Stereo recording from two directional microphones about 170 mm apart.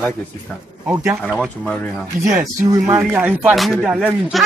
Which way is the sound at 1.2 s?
Centre (ahead or behind).